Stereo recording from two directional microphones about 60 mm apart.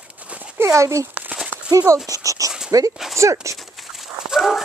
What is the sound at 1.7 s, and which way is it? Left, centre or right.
Speech, right.